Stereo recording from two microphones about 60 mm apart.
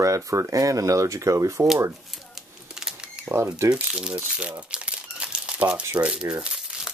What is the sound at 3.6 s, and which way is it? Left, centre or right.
Speech, right.